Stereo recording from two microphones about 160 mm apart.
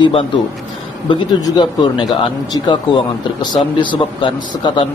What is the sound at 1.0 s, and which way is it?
A man's voice, 30° left (ahead or behind).